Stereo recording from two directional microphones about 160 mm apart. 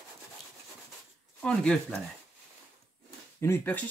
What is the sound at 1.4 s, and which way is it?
Speech, 5° left (ahead or behind).